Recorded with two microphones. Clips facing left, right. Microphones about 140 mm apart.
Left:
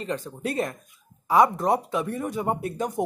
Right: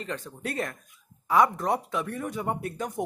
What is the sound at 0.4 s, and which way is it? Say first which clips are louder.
Speech: left 4 dB; 20° left (ahead or behind).